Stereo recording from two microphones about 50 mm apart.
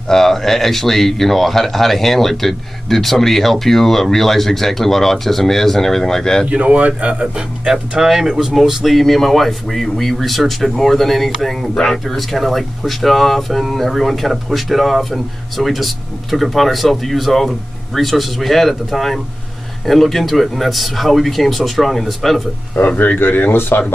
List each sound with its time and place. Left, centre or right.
0.1 s speech: centre
6.4 s speech: right
7.7 s speech: centre
22.8 s speech: left